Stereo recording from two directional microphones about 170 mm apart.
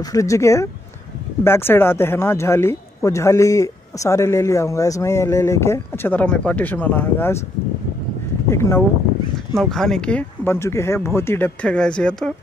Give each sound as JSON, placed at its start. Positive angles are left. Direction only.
{"t": 0.0, "sound": "speech", "side_deg": 20}
{"t": 8.5, "sound": "speech", "side_deg": 15}
{"t": 9.5, "sound": "speech", "side_deg": 0}